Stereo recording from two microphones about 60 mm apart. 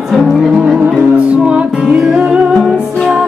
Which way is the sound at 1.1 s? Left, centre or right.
Centre.